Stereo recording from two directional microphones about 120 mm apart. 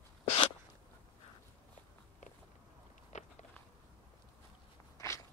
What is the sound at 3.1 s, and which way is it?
Walk, 75° left (ahead or behind).